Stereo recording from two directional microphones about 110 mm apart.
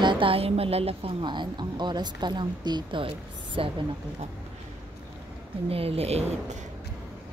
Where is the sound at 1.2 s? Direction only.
45° right (ahead or behind).